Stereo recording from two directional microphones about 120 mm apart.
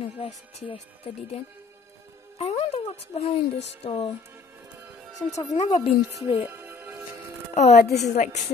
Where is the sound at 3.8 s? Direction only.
55° left (ahead or behind).